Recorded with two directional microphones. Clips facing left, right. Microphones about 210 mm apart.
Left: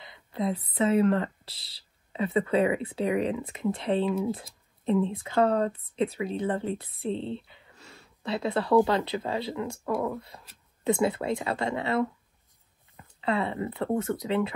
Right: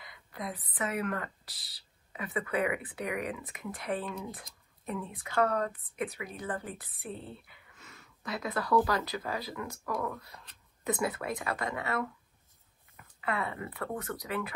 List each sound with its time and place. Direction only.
0.0 s speech: 25° left (ahead or behind)